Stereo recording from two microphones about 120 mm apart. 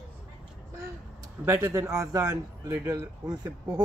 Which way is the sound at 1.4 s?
20° right (ahead or behind).